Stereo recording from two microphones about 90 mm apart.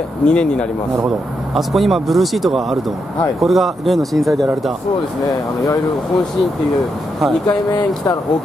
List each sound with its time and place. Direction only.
0.2 s speech: 10° left (ahead or behind)
1.5 s speech: centre (ahead or behind)
5.3 s speech: 45° left (ahead or behind)
7.4 s speech: 45° left (ahead or behind)